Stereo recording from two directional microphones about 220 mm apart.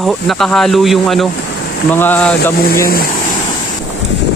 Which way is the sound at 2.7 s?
40° left (ahead or behind).